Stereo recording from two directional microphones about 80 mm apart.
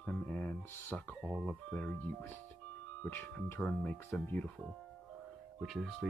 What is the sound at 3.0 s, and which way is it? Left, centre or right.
Speech, left.